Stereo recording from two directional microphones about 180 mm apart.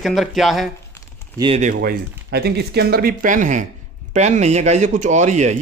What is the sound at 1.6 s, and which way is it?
Speech, 55° right (ahead or behind).